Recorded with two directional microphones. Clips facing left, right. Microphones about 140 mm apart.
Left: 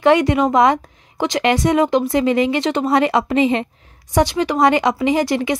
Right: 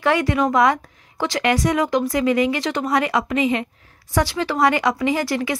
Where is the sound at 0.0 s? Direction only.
20° left (ahead or behind).